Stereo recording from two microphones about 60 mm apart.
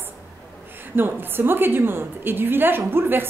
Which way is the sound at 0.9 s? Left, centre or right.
Right.